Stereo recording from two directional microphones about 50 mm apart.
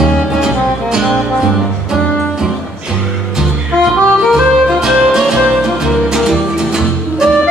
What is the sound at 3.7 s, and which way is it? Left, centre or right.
Music, centre.